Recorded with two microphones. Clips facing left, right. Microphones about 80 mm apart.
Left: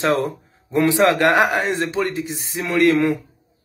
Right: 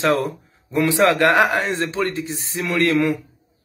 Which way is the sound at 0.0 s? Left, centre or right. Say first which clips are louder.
Even; left.